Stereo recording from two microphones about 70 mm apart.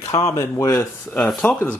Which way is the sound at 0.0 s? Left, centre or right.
Left.